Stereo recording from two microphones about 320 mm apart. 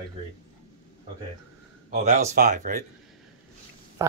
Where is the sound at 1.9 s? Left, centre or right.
Right.